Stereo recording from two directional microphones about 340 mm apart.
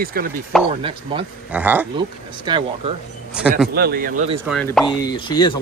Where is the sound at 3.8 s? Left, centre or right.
Right.